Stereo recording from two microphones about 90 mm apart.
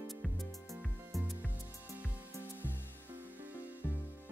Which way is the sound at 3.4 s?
20° right (ahead or behind).